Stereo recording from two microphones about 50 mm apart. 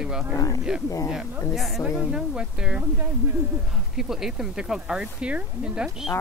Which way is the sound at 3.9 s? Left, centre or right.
Centre.